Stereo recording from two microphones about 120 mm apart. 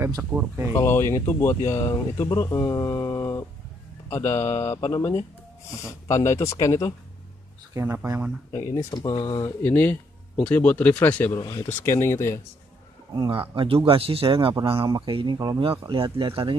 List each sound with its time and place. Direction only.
0.2 s speech: 10° right (ahead or behind)
0.7 s speech: 20° left (ahead or behind)
7.7 s speech: 20° right (ahead or behind)
8.5 s speech: 30° left (ahead or behind)
9.4 s speech: 15° left (ahead or behind)
11.3 s speech: 35° left (ahead or behind)
11.8 s speech: 25° left (ahead or behind)
13.3 s speech: 50° right (ahead or behind)
15.3 s speech: 30° right (ahead or behind)
15.9 s speech: 45° right (ahead or behind)